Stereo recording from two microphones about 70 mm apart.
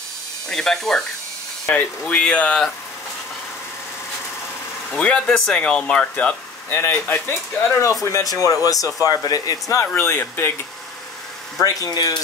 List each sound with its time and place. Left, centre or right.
0.5 s speech: centre
4.9 s speech: centre
6.7 s speech: left
7.8 s speech: left
9.9 s speech: left
11.6 s speech: left